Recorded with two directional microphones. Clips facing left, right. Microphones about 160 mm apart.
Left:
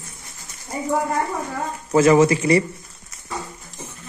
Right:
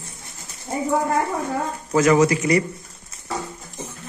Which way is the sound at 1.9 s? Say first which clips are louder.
Left 2 dB; 30° left (ahead or behind).